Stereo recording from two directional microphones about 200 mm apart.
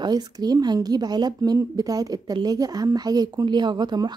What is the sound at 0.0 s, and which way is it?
Speech, 20° right (ahead or behind).